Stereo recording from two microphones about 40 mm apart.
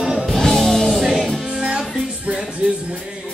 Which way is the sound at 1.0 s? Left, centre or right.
Centre.